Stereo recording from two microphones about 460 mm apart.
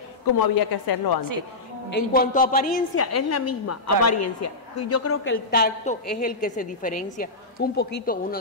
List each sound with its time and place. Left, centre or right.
0.2 s a woman's voice: left
1.9 s a man's voice: left
3.0 s a woman's voice: left